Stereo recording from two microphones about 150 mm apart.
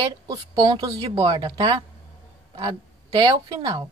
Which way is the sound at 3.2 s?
30° right (ahead or behind).